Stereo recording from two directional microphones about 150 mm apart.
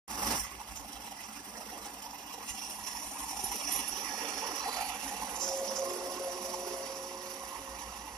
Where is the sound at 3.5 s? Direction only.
Centre (ahead or behind).